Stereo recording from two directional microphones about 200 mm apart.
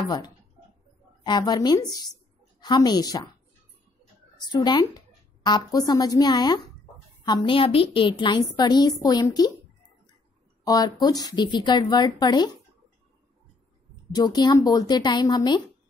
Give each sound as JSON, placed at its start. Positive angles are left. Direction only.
{"t": 1.2, "sound": "a woman's voice", "side_deg": 20}
{"t": 4.4, "sound": "a woman's voice", "side_deg": 20}
{"t": 10.6, "sound": "a woman's voice", "side_deg": 20}
{"t": 14.1, "sound": "a woman's voice", "side_deg": 20}